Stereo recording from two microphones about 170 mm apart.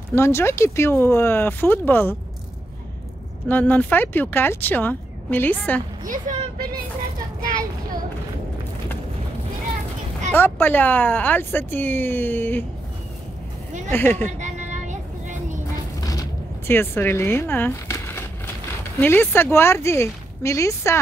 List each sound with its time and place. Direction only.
0.1 s speech: 15° left (ahead or behind)
3.4 s speech: 10° left (ahead or behind)
6.0 s speech: 50° right (ahead or behind)
10.3 s speech: 10° left (ahead or behind)
13.9 s speech: 10° left (ahead or behind)
14.2 s vehicle: 45° right (ahead or behind)
15.7 s a sound: 20° left (ahead or behind)
18.9 s speech: 10° left (ahead or behind)